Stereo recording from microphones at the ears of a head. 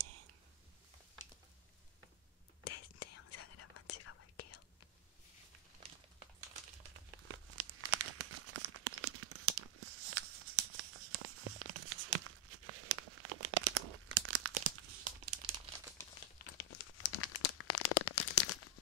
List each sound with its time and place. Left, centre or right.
2.6 s whispering: left
6.4 s crumpling: right
16.2 s crumpling: left